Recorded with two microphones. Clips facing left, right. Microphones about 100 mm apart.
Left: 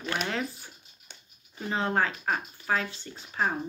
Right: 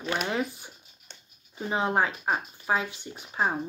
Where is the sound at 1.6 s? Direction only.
15° right (ahead or behind).